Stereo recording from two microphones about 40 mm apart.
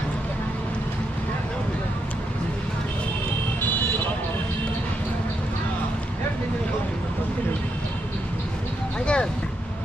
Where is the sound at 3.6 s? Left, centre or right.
Left.